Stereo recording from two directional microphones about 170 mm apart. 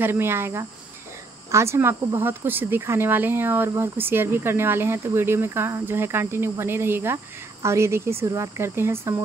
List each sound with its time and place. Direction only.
0.0 s speech: 15° right (ahead or behind)